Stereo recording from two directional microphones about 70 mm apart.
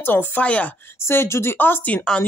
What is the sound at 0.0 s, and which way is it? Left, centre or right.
Speech, left.